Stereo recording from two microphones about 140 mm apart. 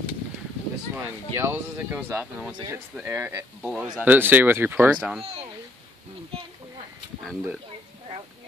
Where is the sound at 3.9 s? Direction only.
15° right (ahead or behind).